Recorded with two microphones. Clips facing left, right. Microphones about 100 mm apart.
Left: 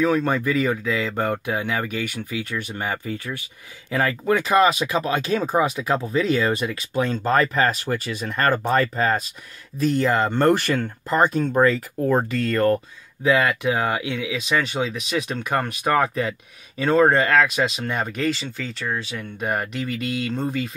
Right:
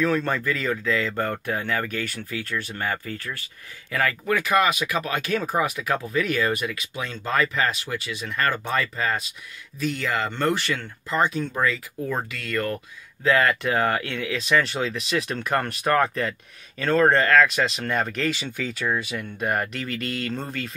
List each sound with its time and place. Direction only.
0.0 s speech: 10° left (ahead or behind); by 6.9 s 30° left (ahead or behind)
6.9 s speech: 40° left (ahead or behind)
13.2 s speech: 10° left (ahead or behind)